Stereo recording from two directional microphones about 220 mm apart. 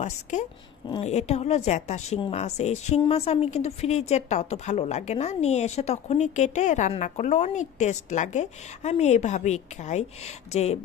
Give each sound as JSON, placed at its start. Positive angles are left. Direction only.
{"t": 0.0, "sound": "a woman's voice", "side_deg": 35}